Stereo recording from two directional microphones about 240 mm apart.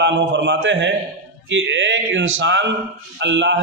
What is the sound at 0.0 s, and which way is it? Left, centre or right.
A man's voice, right.